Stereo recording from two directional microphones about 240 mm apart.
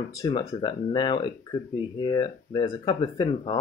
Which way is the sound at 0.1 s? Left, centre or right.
Centre.